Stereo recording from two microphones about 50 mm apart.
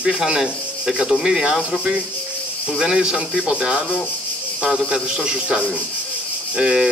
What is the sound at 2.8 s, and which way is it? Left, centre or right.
Speech, centre.